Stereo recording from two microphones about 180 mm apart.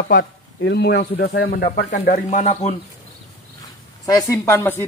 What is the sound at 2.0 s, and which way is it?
Speech, 45° left (ahead or behind).